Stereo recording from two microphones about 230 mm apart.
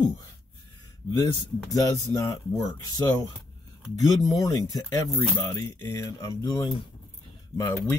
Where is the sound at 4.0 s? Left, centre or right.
Centre.